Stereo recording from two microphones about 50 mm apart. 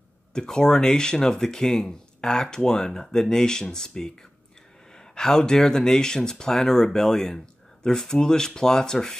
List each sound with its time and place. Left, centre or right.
0.3 s speech: centre